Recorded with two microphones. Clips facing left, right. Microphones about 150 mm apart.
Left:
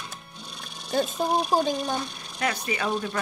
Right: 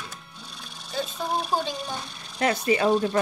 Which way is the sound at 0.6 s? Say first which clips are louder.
Left 5 dB; 55° left (ahead or behind).